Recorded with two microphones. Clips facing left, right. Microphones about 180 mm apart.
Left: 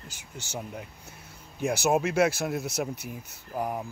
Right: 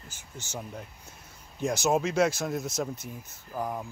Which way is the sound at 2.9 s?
70° left (ahead or behind).